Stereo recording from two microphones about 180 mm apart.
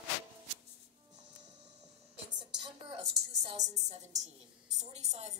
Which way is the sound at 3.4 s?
40° right (ahead or behind).